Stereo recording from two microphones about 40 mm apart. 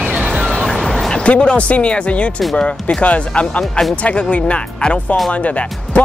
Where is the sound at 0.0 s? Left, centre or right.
Right.